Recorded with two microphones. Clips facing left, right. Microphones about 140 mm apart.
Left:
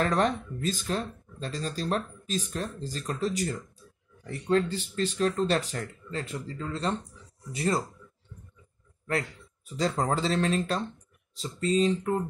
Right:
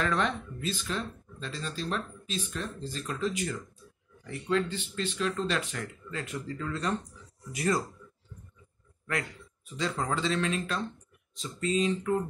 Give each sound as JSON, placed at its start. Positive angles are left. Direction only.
{"t": 0.0, "sound": "speech", "side_deg": 40}
{"t": 9.8, "sound": "speech", "side_deg": 35}